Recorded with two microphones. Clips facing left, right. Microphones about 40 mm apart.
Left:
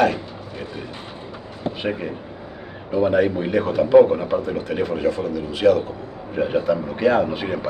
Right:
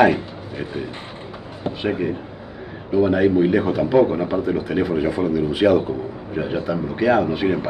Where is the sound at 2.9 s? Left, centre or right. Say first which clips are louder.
Right 2 dB; centre.